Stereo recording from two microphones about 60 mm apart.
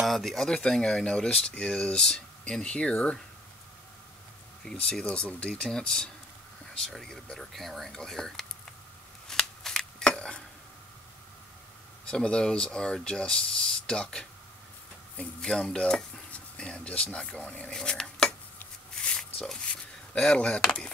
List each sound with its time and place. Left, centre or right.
0.0 s speech: centre
4.6 s speech: centre
9.3 s scissors: centre
12.1 s speech: centre
15.4 s speech: centre
17.7 s cutlery: centre
19.0 s speech: centre